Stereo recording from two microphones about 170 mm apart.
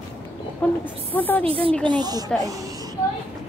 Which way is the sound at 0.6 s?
10° left (ahead or behind).